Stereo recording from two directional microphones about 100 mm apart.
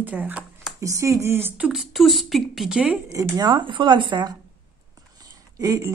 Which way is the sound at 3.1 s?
40° right (ahead or behind).